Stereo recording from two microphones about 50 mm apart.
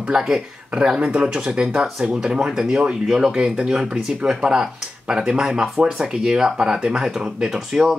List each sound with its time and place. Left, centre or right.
0.1 s speech: centre
7.5 s speech: centre